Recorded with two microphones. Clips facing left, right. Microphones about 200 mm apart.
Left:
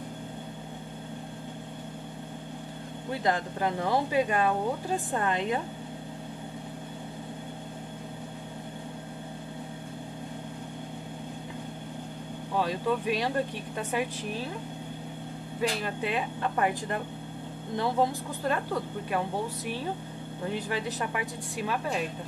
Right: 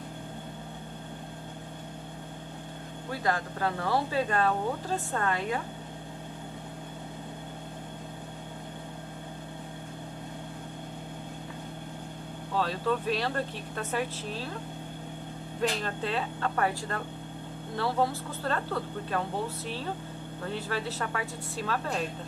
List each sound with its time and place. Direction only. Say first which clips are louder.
3.1 s speech: left 2 dB; 20° left (ahead or behind)
12.5 s speech: left 1 dB; 15° left (ahead or behind)
15.8 s speech: left 1 dB; 15° left (ahead or behind)
20.4 s speech: left 2 dB; 15° left (ahead or behind)